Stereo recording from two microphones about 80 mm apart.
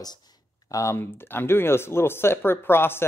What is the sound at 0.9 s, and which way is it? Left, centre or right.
Speech, left.